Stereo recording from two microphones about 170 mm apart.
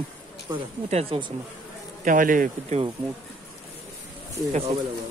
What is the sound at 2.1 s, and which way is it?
Speech, 50° right (ahead or behind).